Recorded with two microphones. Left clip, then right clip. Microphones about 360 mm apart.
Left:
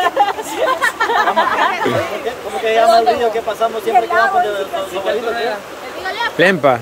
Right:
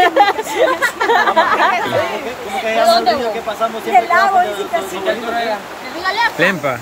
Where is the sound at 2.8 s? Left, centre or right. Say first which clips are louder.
Left 1 dB; right.